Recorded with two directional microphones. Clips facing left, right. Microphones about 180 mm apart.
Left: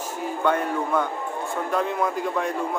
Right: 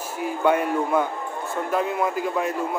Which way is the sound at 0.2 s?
10° right (ahead or behind).